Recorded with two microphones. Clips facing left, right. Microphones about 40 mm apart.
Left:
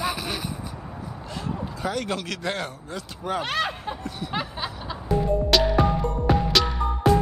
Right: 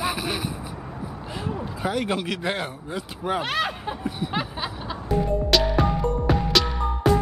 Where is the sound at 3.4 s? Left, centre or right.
Centre.